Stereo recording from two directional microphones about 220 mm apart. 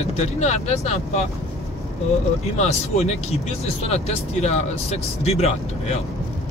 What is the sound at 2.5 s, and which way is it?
Speech, 30° left (ahead or behind).